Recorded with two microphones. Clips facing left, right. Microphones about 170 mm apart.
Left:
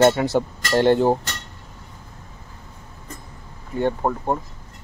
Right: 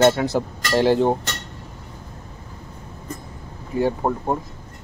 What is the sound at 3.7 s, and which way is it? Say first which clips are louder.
Speech: right 1 dB; 5° right (ahead or behind).